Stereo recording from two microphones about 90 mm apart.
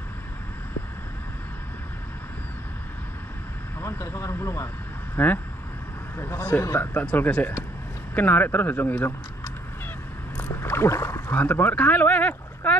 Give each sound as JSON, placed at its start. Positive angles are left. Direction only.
{"t": 3.8, "sound": "speech", "side_deg": 35}
{"t": 5.1, "sound": "speech", "side_deg": 20}
{"t": 10.6, "sound": "rowboat", "side_deg": 30}
{"t": 11.3, "sound": "speech", "side_deg": 20}